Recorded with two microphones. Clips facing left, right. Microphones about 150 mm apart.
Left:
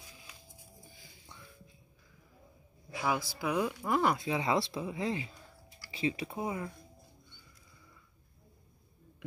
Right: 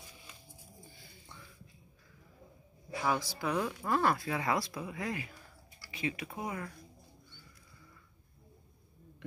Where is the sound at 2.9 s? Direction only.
10° left (ahead or behind).